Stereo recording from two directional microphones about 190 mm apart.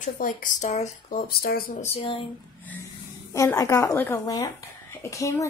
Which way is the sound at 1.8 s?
30° left (ahead or behind).